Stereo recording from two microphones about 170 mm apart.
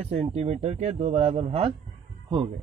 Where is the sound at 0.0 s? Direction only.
35° right (ahead or behind).